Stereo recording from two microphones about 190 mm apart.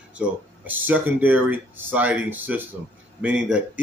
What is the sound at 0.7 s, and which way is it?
A man's voice, 10° right (ahead or behind).